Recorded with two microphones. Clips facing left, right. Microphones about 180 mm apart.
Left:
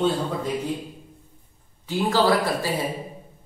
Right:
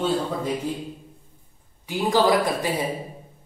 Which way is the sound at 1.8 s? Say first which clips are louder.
Right 1 dB; 15° right (ahead or behind).